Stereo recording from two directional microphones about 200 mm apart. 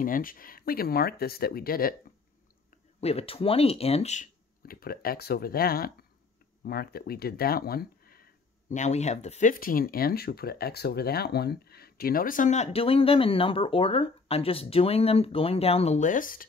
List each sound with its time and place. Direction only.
0.0 s speech: 45° left (ahead or behind)
3.0 s speech: 30° left (ahead or behind)